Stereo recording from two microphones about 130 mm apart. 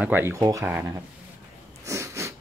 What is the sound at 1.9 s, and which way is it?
Sneeze, 20° right (ahead or behind).